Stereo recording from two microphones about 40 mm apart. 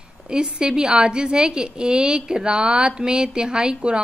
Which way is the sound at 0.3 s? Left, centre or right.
Right.